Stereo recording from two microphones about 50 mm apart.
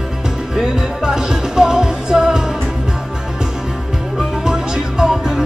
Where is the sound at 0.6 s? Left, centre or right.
Centre.